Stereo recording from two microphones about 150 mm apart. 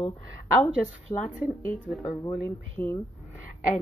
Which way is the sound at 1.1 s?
35° left (ahead or behind).